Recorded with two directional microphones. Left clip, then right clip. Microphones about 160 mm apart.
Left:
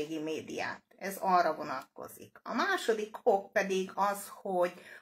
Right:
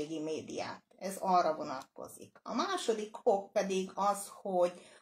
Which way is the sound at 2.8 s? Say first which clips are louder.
Left 2 dB; 5° right (ahead or behind).